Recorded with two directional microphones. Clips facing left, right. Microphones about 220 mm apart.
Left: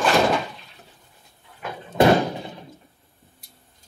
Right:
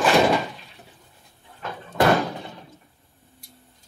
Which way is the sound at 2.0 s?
20° left (ahead or behind).